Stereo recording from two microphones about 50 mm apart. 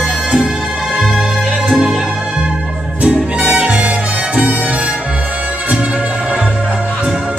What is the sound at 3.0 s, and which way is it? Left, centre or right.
Music, right.